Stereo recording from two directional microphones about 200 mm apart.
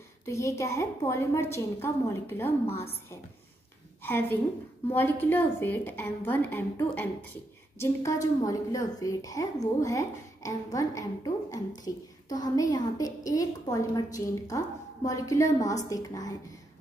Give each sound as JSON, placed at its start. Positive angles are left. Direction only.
{"t": 0.2, "sound": "a woman's voice", "side_deg": 15}
{"t": 4.0, "sound": "a woman's voice", "side_deg": 10}